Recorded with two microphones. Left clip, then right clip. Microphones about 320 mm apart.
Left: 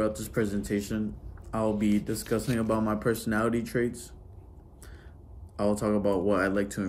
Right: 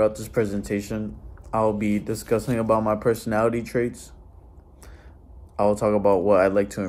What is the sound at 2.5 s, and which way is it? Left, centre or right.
Speech, right.